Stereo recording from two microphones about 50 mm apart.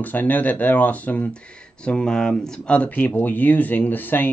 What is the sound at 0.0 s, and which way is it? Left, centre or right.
Speech, left.